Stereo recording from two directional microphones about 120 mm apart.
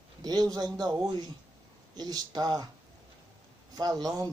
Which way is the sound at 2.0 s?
35° right (ahead or behind).